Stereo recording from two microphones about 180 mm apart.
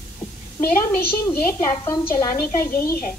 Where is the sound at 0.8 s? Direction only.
10° left (ahead or behind).